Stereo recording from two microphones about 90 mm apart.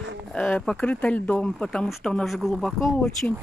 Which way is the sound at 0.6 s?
10° left (ahead or behind).